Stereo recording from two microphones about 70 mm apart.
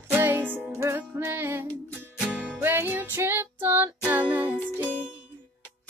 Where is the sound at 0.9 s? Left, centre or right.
Right.